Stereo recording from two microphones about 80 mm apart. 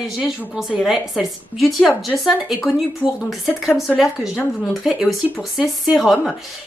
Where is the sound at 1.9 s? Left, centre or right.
Centre.